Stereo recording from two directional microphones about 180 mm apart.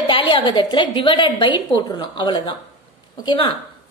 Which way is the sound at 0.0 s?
30° left (ahead or behind).